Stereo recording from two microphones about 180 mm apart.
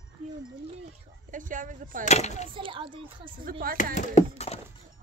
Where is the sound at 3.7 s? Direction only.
45° left (ahead or behind).